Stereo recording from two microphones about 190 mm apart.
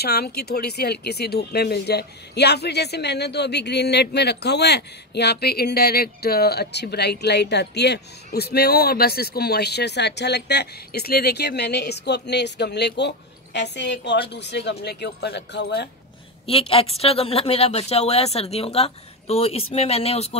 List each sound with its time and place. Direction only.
0.0 s speech: 55° left (ahead or behind)
16.4 s a woman's voice: 30° left (ahead or behind)